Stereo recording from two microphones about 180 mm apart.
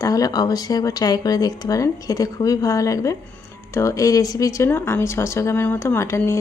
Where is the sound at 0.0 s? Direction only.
20° left (ahead or behind).